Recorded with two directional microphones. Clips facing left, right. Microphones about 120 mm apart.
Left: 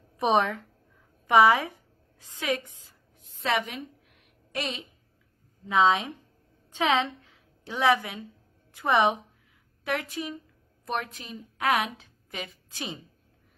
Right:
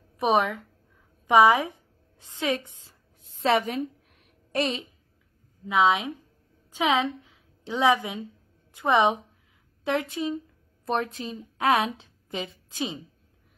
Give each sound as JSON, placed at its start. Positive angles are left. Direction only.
{"t": 0.2, "sound": "a woman's voice", "side_deg": 0}
{"t": 1.2, "sound": "a woman's voice", "side_deg": -15}
{"t": 2.1, "sound": "a sound", "side_deg": -25}
{"t": 5.7, "sound": "a woman's voice", "side_deg": -5}